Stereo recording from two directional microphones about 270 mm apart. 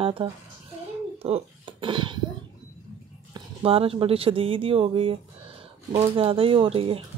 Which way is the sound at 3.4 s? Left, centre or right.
Right.